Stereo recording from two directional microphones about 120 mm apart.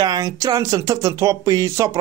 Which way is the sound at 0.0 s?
30° right (ahead or behind).